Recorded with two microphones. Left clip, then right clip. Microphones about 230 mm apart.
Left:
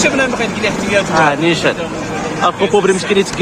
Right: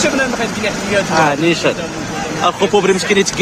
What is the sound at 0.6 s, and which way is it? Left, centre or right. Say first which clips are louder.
Speech: left 2 dB; centre.